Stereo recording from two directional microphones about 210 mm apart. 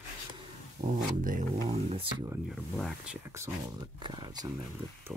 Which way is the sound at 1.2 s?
35° right (ahead or behind).